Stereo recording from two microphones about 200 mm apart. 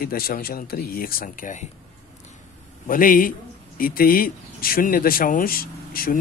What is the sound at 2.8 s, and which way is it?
Speech, 45° left (ahead or behind).